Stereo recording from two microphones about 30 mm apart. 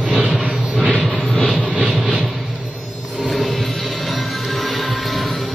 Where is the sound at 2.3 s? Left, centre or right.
Right.